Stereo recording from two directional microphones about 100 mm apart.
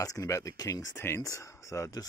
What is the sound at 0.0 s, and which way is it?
Speech, 35° left (ahead or behind).